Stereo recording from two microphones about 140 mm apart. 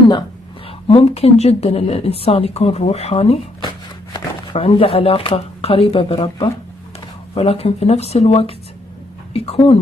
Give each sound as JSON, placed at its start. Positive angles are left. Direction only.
{"t": 0.8, "sound": "a woman's voice", "side_deg": 45}
{"t": 3.6, "sound": "a woman's voice", "side_deg": 35}